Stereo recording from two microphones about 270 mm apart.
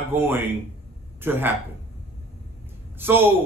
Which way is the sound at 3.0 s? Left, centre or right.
Centre.